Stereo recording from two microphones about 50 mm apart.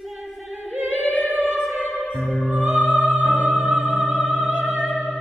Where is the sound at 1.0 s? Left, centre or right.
Left.